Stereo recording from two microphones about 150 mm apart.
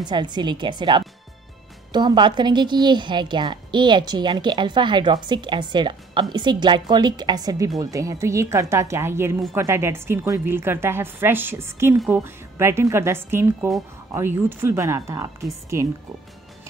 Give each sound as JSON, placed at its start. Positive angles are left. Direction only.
{"t": 0.0, "sound": "a woman's voice", "side_deg": -30}